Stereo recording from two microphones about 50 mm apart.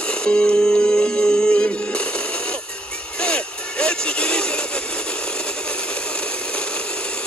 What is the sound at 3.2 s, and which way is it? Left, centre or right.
Music, left.